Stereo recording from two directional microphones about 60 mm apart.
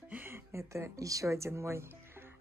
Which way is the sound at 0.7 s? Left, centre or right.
Right.